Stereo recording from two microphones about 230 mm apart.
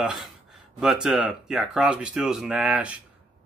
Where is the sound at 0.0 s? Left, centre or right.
Centre.